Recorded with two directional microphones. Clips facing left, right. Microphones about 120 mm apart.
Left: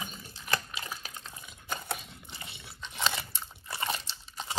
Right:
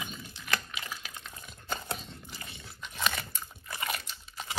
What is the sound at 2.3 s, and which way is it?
Biting, 25° left (ahead or behind).